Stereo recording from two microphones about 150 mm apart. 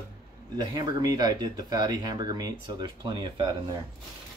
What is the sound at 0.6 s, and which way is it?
Speech, 25° right (ahead or behind).